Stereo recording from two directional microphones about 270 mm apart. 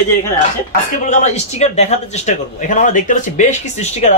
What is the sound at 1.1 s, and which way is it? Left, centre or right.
Speech, left.